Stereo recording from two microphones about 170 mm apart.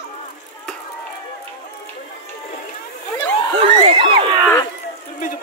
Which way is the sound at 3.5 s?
35° right (ahead or behind).